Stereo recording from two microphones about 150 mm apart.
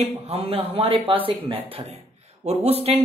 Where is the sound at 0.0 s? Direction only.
40° right (ahead or behind).